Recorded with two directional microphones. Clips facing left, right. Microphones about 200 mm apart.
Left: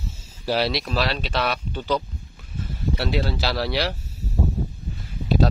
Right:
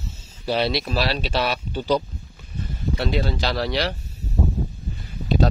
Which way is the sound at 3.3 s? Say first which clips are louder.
Right 1 dB; 5° left (ahead or behind).